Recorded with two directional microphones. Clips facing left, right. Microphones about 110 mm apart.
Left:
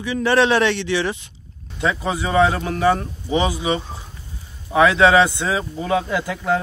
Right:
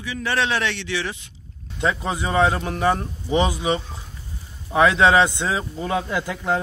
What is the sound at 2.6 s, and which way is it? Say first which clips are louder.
Speech: left 3 dB; 25° right (ahead or behind).